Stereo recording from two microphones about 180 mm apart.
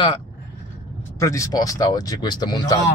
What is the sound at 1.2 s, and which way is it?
Speech, 15° left (ahead or behind).